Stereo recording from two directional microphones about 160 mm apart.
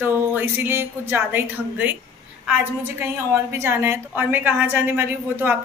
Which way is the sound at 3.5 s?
15° right (ahead or behind).